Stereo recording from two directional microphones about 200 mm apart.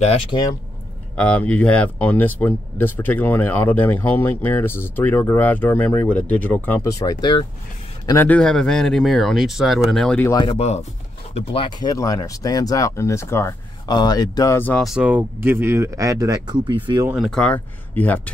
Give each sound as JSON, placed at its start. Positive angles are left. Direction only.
{"t": 0.0, "sound": "speech", "side_deg": 30}
{"t": 1.1, "sound": "speech", "side_deg": 5}
{"t": 8.1, "sound": "speech", "side_deg": 10}
{"t": 10.2, "sound": "speech", "side_deg": 20}
{"t": 17.1, "sound": "speech", "side_deg": 0}